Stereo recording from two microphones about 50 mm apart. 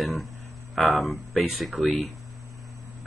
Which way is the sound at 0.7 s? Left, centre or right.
Centre.